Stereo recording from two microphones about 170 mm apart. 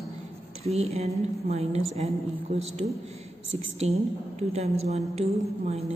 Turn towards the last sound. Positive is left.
turn(degrees=-40)  # may be behind; listen again after turning